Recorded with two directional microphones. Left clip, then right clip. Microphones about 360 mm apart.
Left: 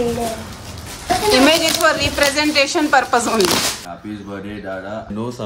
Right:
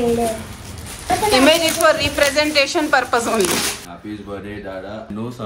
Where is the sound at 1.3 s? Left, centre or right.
Centre.